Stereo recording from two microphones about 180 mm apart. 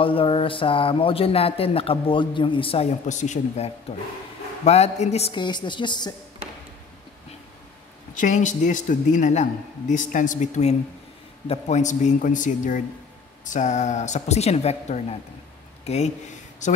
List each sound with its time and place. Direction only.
0.0 s a woman's voice: 30° left (ahead or behind)
8.1 s a man's voice: 45° left (ahead or behind)